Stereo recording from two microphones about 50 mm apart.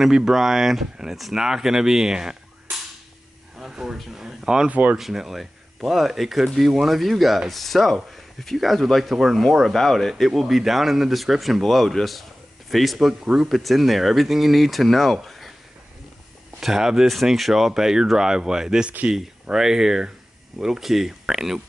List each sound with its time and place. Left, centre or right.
0.0 s speech: centre
3.5 s a sound: centre
4.6 s speech: right
4.9 s speech: centre
13.2 s speech: centre
13.5 s speech: centre
15.2 s a sound: centre
16.6 s speech: centre